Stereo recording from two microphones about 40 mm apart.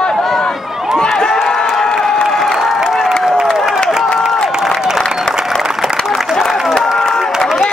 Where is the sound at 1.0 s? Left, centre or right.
Centre.